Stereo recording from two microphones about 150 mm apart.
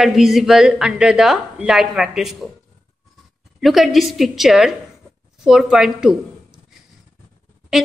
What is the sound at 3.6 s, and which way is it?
A woman's voice, centre (ahead or behind).